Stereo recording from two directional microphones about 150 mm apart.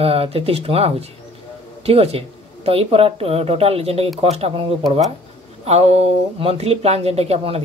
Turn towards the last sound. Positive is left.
turn(degrees=-40)  # may be behind; listen again after turning